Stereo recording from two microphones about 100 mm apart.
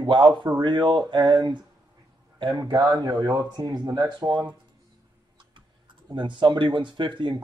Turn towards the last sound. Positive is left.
turn(degrees=-50)  # may be behind; listen again after turning